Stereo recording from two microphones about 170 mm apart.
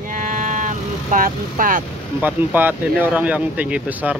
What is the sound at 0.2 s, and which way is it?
Vehicle, 50° right (ahead or behind).